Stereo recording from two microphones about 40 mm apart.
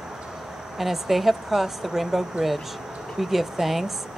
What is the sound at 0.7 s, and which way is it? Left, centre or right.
Speech, centre.